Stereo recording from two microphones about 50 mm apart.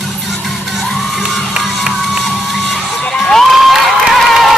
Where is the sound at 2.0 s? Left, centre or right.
Centre.